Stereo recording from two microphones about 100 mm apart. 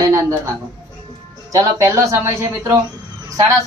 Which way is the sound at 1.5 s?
30° right (ahead or behind).